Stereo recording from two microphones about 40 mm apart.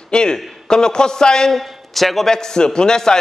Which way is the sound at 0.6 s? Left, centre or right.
Centre.